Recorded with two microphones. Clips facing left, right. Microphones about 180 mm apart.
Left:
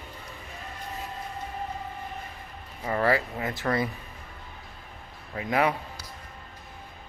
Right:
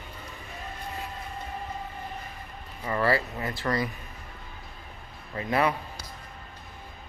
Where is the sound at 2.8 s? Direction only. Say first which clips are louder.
Left 1 dB; 20° left (ahead or behind).